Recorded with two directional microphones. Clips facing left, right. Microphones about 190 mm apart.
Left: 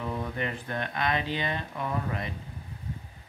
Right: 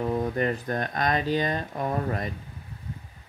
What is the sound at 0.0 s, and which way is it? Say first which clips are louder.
Speech: right 7 dB; 40° right (ahead or behind).